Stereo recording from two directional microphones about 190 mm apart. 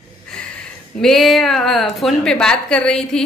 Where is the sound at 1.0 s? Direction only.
Centre (ahead or behind).